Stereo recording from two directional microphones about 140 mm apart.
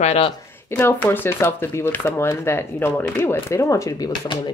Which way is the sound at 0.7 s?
15° left (ahead or behind).